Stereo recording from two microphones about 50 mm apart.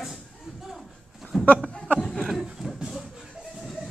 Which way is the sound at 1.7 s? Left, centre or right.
Left.